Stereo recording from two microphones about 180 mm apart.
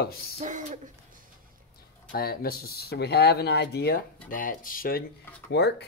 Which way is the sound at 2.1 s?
55° left (ahead or behind).